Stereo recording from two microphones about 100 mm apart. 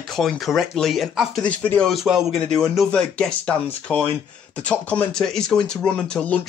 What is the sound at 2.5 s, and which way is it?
Speech, 5° left (ahead or behind).